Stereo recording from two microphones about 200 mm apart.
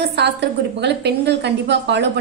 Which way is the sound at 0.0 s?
60° right (ahead or behind).